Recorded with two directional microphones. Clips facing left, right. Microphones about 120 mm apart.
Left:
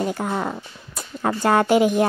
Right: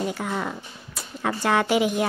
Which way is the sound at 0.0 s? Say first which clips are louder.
Left 3 dB; 40° left (ahead or behind).